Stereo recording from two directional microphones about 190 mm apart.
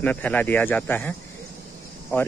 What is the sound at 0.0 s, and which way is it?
Speech, 10° left (ahead or behind).